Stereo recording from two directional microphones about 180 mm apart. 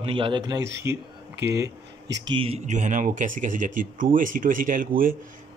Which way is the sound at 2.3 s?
35° right (ahead or behind).